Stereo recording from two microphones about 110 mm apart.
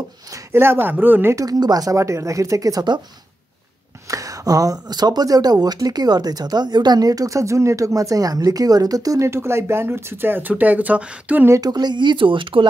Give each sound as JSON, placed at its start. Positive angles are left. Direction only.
{"t": 0.3, "sound": "speech", "side_deg": -25}
{"t": 1.3, "sound": "speech", "side_deg": -35}
{"t": 4.1, "sound": "speech", "side_deg": -30}
{"t": 11.4, "sound": "speech", "side_deg": -25}
{"t": 11.7, "sound": "speech", "side_deg": -40}